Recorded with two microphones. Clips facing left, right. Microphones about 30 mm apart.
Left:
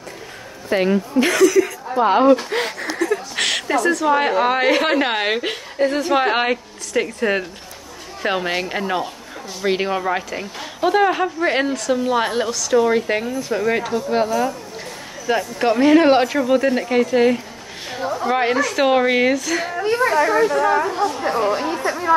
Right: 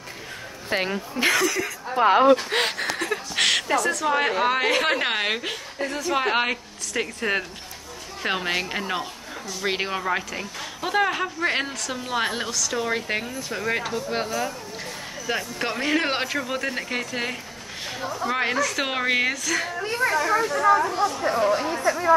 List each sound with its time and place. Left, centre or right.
0.7 s a woman's voice: centre
2.5 s speech: right
3.3 s a woman's voice: centre
5.4 s speech: left
6.1 s a woman's voice: centre
19.8 s speech: left
21.8 s speech: left